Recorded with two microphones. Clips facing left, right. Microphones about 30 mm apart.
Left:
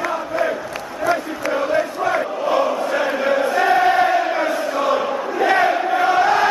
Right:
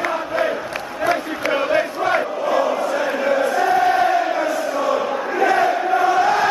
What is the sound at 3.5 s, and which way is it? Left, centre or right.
Chant, left.